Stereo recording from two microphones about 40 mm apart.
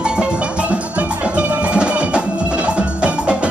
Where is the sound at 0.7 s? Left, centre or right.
Right.